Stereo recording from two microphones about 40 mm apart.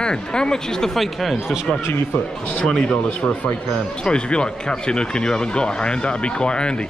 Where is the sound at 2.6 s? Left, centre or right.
Left.